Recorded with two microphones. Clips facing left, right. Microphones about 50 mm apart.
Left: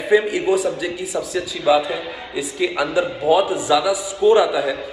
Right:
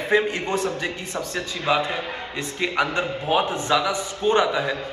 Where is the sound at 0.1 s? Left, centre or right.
Centre.